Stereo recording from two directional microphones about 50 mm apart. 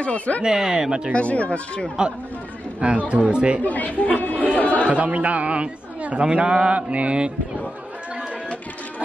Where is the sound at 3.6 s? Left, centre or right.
Left.